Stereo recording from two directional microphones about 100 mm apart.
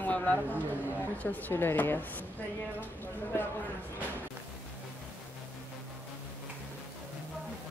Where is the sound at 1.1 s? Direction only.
15° left (ahead or behind).